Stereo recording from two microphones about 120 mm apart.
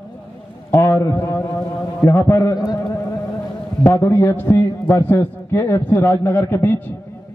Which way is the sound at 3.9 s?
25° left (ahead or behind).